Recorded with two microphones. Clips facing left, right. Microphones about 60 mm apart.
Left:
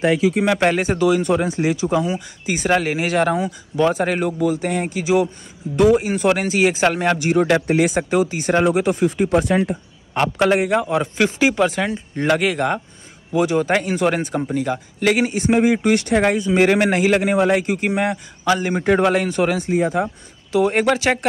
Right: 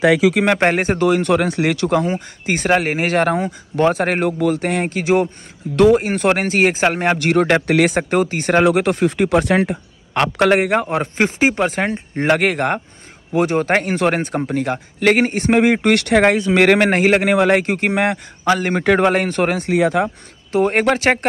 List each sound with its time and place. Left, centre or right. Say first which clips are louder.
0.0 s speech: right 3 dB; right
0.6 s a man's voice: right 1 dB; right
1.3 s a man's voice: right 2 dB; right
7.2 s speech: right 2 dB; right
7.6 s speech: right 2 dB; right
8.1 s a man's voice: right 2 dB; right
10.9 s a man's voice: even; right
19.7 s speech: right 3 dB; right
20.5 s speech: right 1 dB; right